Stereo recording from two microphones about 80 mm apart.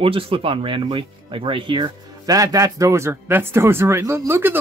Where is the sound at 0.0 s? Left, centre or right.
Right.